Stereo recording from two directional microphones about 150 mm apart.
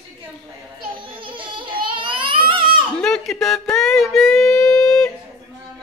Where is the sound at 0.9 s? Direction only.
35° right (ahead or behind).